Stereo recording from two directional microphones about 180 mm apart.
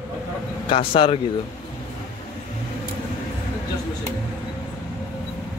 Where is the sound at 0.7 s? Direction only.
30° left (ahead or behind).